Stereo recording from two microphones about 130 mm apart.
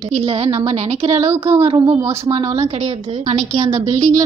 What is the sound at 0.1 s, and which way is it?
Speech, 50° right (ahead or behind).